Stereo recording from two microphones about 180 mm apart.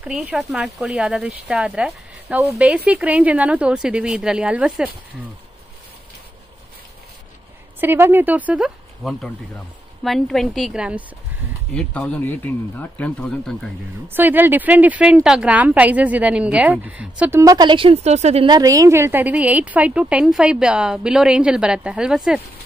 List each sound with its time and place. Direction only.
0.0 s speech: 5° right (ahead or behind)
7.8 s speech: 10° right (ahead or behind)
14.0 s speech: 10° right (ahead or behind)
17.4 s a woman's voice: 20° right (ahead or behind); by 18.5 s 35° right (ahead or behind)
18.5 s speech: 20° right (ahead or behind)